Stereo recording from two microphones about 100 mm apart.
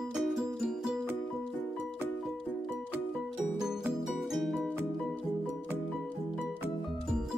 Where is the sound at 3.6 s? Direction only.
5° right (ahead or behind).